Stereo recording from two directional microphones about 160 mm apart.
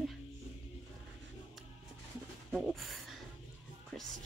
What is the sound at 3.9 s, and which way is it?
Music, 5° left (ahead or behind).